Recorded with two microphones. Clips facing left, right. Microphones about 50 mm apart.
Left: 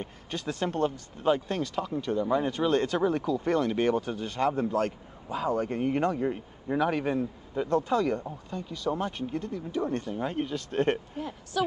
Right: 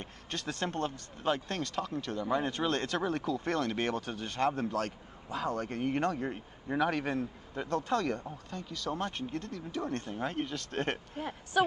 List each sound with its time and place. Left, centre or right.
0.0 s speech: centre
2.2 s speech: centre
10.1 s speech: centre
11.6 s speech: right